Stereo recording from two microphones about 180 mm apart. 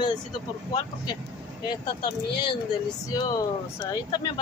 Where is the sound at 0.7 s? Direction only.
25° left (ahead or behind).